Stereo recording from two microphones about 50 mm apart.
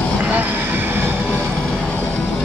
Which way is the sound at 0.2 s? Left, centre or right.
Right.